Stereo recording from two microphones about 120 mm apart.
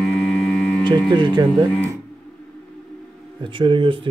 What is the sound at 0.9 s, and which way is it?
Speech, 40° right (ahead or behind).